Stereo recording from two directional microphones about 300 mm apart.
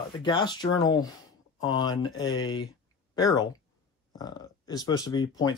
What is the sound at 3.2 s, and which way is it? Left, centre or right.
Speech, centre.